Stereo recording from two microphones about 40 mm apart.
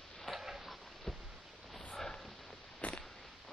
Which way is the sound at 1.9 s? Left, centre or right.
Centre.